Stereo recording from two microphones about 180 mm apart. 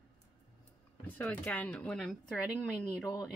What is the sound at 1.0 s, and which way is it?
Speech, 10° left (ahead or behind).